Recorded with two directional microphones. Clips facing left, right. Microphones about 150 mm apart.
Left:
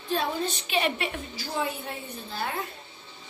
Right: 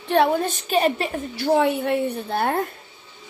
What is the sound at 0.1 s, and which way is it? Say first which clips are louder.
A woman's voice: right 9 dB; 60° right (ahead or behind).